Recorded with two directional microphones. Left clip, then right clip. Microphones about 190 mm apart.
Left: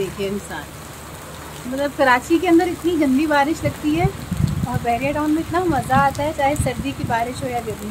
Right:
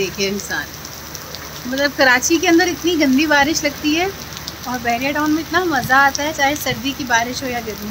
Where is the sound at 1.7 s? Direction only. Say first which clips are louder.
Right 3 dB; 5° right (ahead or behind).